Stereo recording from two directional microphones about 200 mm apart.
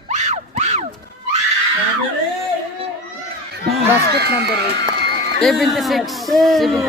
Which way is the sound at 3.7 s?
55° right (ahead or behind).